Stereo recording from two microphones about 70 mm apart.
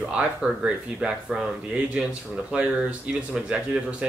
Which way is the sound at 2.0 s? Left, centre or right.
Centre.